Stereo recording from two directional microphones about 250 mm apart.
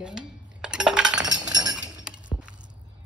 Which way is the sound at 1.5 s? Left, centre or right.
Centre.